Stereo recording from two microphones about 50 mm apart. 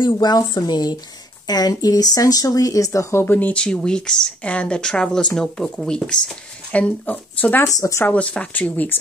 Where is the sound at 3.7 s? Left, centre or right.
Centre.